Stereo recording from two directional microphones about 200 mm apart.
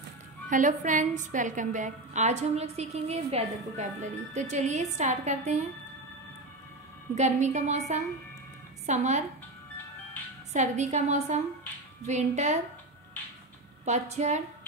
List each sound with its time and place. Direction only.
0.5 s a woman's voice: 40° right (ahead or behind)
7.2 s a woman's voice: 35° right (ahead or behind)
10.5 s a woman's voice: 35° right (ahead or behind)
13.8 s a woman's voice: 35° right (ahead or behind)